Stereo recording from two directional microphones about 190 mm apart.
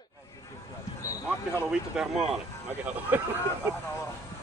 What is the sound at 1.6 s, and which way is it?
Speech, centre (ahead or behind).